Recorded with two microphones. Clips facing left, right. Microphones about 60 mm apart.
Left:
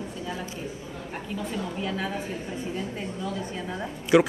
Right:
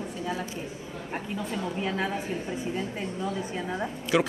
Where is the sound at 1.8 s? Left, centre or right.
Right.